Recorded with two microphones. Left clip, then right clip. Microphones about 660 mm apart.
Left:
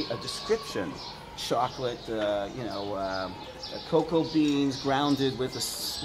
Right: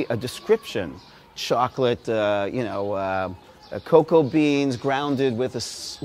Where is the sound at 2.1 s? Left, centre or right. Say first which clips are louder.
Right 7 dB; right.